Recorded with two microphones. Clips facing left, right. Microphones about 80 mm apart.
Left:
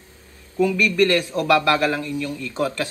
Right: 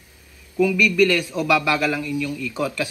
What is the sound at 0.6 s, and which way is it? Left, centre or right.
A man's voice, left.